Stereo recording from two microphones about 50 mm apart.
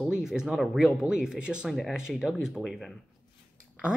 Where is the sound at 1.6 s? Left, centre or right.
Centre.